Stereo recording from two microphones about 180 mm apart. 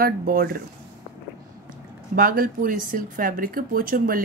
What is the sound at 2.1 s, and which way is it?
Speech, 55° right (ahead or behind).